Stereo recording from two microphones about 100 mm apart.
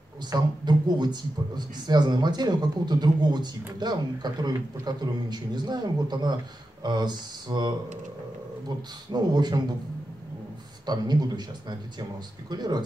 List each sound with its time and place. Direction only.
0.3 s a man's voice: 45° right (ahead or behind)
10.9 s a man's voice: 45° right (ahead or behind)